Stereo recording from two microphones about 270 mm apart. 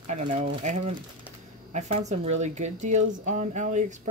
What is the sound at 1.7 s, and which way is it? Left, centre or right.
Speech, right.